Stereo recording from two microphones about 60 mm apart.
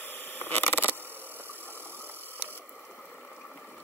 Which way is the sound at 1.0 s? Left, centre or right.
Right.